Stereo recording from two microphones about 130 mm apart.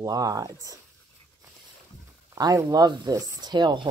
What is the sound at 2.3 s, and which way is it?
Speech, 25° right (ahead or behind).